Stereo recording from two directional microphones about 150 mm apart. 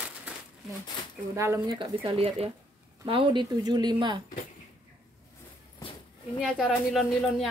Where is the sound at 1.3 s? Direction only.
20° right (ahead or behind).